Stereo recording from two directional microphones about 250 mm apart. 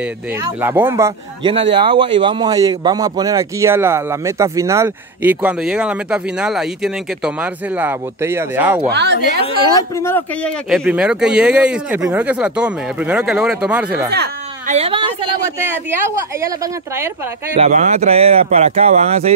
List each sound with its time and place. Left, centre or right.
0.0 s speech: centre
8.9 s a woman's voice: right
9.8 s speech: centre
10.7 s speech: centre
14.1 s a sound: right
14.8 s speech: right
16.3 s speech: centre
17.6 s speech: right